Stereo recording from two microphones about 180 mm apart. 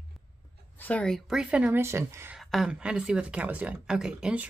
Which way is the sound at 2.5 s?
5° right (ahead or behind).